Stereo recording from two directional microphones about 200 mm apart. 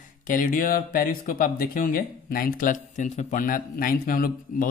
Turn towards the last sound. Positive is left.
turn(degrees=45)  # may be behind; listen again after turning